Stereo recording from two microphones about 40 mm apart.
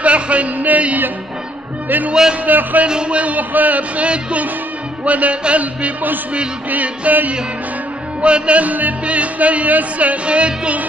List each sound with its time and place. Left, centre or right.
0.0 s a sound: right
0.6 s music: right
1.9 s music: right
2.9 s speech: right
6.7 s music: right
8.2 s speech: right